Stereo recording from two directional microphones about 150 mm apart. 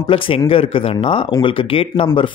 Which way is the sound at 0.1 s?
40° left (ahead or behind).